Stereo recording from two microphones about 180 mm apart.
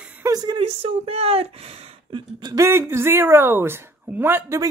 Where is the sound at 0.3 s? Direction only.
25° right (ahead or behind).